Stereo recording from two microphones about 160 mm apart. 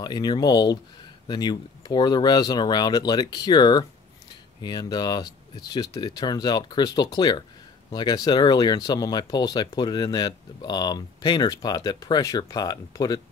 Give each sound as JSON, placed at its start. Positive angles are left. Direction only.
{"t": 0.0, "sound": "speech", "side_deg": 25}